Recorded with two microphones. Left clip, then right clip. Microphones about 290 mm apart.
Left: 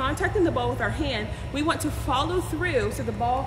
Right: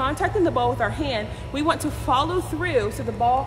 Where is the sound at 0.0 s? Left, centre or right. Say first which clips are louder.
Right 2 dB; centre.